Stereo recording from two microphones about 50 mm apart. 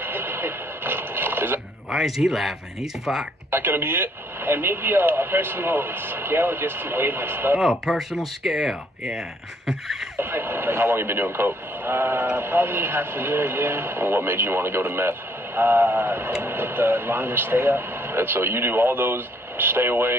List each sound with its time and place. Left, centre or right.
0.0 s radio: right
1.9 s speech: centre
3.5 s speech: right
7.8 s speech: centre
10.1 s speech: right